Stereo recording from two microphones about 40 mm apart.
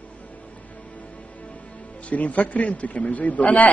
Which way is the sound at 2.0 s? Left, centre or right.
Left.